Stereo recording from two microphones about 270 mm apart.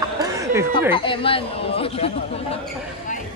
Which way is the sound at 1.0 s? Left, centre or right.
Centre.